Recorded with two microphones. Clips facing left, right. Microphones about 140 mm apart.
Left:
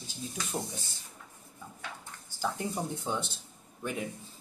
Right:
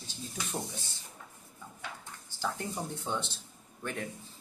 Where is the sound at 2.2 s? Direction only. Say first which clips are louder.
Left 2 dB; 10° left (ahead or behind).